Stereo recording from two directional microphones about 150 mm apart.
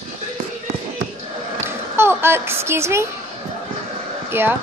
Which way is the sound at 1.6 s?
15° right (ahead or behind).